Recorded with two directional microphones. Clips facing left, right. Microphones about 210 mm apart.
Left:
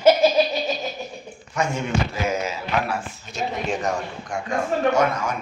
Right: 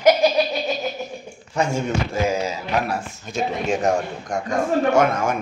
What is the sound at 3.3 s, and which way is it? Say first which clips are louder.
A man's voice: right 3 dB; 45° right (ahead or behind).